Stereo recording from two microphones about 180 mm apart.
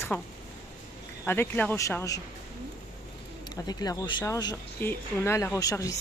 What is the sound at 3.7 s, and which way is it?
Speech, 20° left (ahead or behind).